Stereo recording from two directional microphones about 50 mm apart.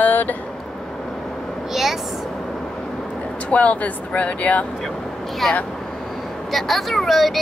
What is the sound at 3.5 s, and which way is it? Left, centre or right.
Speech, left.